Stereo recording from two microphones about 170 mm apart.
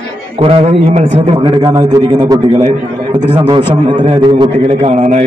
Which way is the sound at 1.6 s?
20° right (ahead or behind).